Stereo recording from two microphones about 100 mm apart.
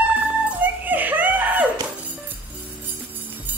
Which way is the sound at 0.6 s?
15° right (ahead or behind).